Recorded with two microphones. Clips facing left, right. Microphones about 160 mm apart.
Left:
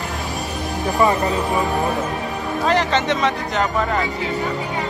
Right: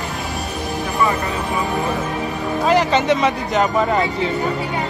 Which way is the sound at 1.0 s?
20° left (ahead or behind).